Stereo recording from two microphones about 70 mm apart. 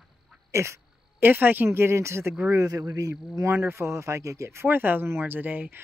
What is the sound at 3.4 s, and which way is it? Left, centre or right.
Speech, right.